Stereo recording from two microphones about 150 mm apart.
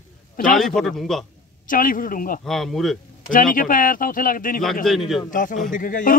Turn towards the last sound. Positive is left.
turn(degrees=65)  # may be behind; listen again after turning